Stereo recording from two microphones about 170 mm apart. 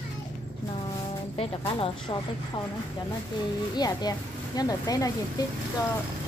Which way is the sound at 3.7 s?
25° left (ahead or behind).